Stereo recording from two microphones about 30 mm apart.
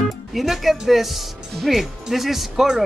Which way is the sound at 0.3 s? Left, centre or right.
Centre.